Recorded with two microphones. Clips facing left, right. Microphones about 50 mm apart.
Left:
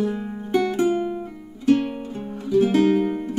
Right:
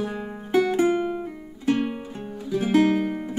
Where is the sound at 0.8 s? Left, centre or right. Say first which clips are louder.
Even; right.